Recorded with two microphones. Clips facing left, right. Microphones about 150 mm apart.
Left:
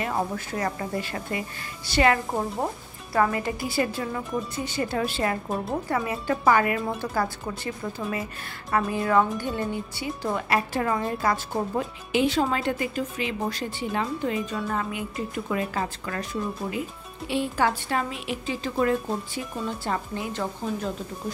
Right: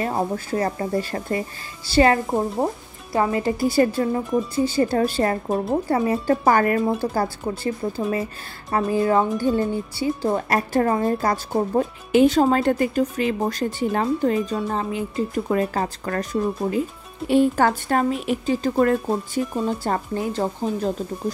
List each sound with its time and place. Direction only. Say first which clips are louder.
0.0 s a woman's voice: right 4 dB; 35° right (ahead or behind)
17.3 s a woman's voice: right 7 dB; 45° right (ahead or behind)